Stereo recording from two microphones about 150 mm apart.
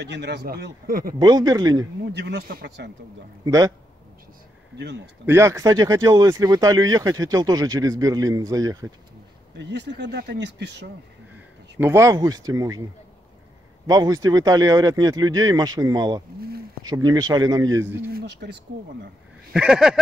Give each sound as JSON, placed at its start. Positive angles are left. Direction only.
{"t": 0.3, "sound": "speech", "side_deg": -80}
{"t": 1.2, "sound": "speech", "side_deg": -25}
{"t": 2.0, "sound": "speech", "side_deg": -85}
{"t": 3.4, "sound": "speech", "side_deg": -25}
{"t": 5.2, "sound": "speech", "side_deg": -15}
{"t": 11.3, "sound": "speech", "side_deg": -15}
{"t": 13.8, "sound": "speech", "side_deg": -25}
{"t": 18.4, "sound": "speech", "side_deg": -90}
{"t": 19.5, "sound": "speech", "side_deg": -5}